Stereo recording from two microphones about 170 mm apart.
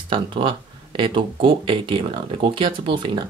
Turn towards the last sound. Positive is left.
turn(degrees=-30)  # may be behind; listen again after turning